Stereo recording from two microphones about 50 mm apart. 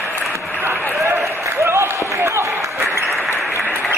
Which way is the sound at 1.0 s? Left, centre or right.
Right.